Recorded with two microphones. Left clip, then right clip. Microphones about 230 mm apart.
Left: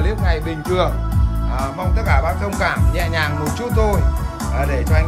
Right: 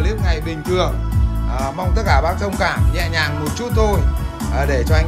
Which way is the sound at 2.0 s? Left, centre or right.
Centre.